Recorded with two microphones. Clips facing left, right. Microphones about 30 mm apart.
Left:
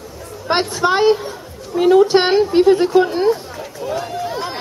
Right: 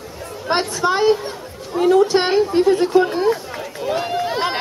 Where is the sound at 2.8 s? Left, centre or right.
Centre.